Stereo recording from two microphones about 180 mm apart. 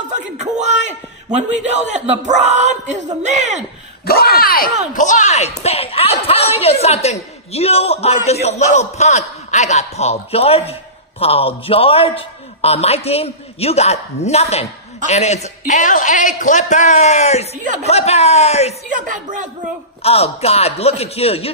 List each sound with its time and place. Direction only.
0.4 s a man's voice: 40° right (ahead or behind)
4.0 s a woman's voice: 60° left (ahead or behind); by 18.8 s 35° left (ahead or behind)
18.9 s a woman's voice: 45° right (ahead or behind)
20.0 s a woman's voice: 35° left (ahead or behind)